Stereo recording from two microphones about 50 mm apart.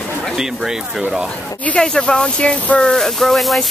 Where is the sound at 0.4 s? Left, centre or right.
Centre.